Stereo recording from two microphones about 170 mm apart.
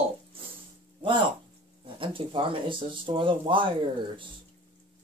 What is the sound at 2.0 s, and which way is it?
Speech, 30° right (ahead or behind).